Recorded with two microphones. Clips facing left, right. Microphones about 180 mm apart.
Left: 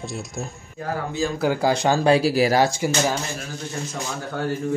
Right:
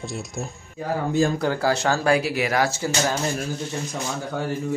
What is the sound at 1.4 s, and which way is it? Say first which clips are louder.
Speech: left 2 dB; 15° left (ahead or behind).